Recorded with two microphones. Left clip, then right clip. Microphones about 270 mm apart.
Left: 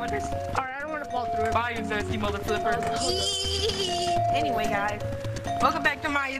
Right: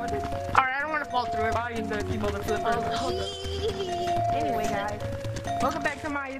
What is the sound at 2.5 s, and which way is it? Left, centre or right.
Music, centre.